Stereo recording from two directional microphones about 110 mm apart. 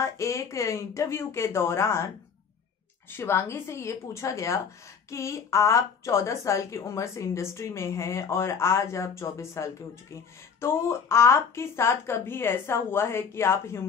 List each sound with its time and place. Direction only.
0.0 s a woman's voice: 25° left (ahead or behind)
3.1 s a woman's voice: 20° left (ahead or behind)